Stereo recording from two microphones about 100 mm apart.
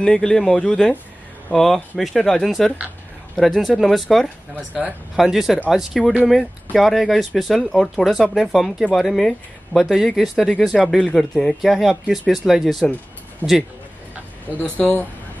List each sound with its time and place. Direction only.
0.0 s speech: 10° left (ahead or behind)
13.4 s a man's voice: 20° left (ahead or behind)